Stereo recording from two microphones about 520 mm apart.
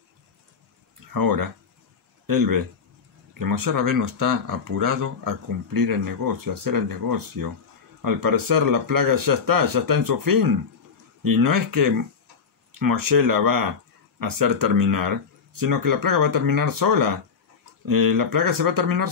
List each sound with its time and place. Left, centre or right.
1.1 s a man's voice: right